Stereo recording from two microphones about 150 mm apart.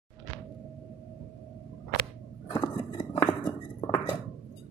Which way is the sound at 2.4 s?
30° left (ahead or behind).